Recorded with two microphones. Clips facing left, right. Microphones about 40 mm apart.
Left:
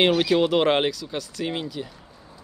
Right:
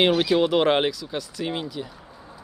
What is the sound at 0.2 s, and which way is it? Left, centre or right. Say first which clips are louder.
Speech: even; centre.